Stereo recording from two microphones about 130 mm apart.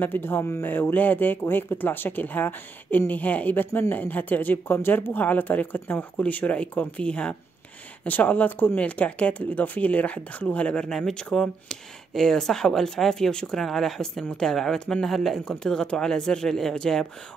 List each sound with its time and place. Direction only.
0.0 s speech: 15° left (ahead or behind)